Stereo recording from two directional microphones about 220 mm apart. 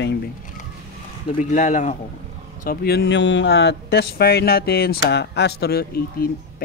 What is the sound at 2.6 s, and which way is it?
Speech, 45° left (ahead or behind).